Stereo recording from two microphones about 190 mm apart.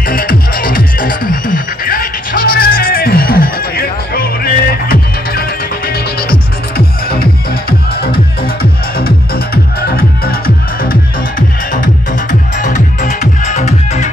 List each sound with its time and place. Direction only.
0.1 s music: 50° left (ahead or behind)
9.0 s music: 55° left (ahead or behind); by 14.0 s 35° left (ahead or behind)